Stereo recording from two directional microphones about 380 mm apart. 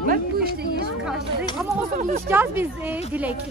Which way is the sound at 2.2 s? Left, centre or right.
Centre.